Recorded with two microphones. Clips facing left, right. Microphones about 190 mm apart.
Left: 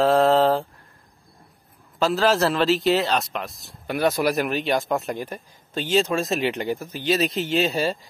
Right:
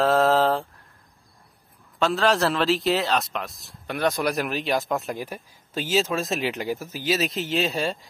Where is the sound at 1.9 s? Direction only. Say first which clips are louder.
Left 2 dB; centre (ahead or behind).